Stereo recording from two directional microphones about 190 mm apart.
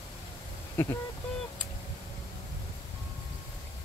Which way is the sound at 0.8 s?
10° left (ahead or behind).